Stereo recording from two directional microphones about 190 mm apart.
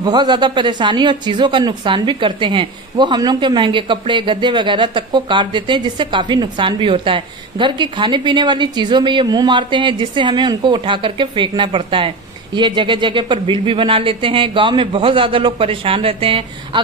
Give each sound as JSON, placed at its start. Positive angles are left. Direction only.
{"t": 0.0, "sound": "speech", "side_deg": -20}